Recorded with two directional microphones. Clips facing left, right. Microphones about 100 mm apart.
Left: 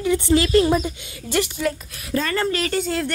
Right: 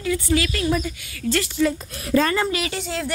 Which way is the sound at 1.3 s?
15° left (ahead or behind).